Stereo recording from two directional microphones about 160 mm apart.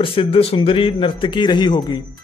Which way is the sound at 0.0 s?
35° left (ahead or behind).